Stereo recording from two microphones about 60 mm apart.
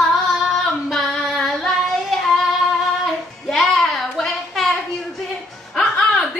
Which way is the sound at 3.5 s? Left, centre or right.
Centre.